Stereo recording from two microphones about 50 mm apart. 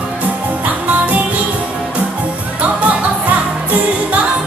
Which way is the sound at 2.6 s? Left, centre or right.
Right.